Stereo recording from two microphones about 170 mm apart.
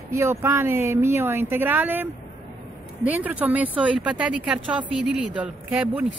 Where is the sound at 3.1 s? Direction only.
10° right (ahead or behind).